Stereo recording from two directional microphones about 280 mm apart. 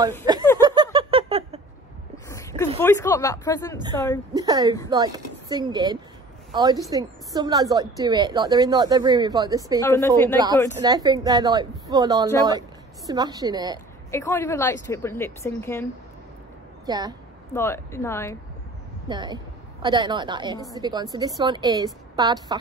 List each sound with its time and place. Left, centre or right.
0.3 s a sound: centre
2.2 s a sound: centre
2.8 s a woman's voice: centre
4.3 s a woman's voice: centre
9.8 s a woman's voice: centre
10.3 s a woman's voice: centre
14.1 s a woman's voice: centre
16.8 s a woman's voice: centre
17.6 s a woman's voice: centre
19.0 s a woman's voice: centre